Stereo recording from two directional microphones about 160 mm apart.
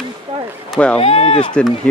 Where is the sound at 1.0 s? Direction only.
35° left (ahead or behind).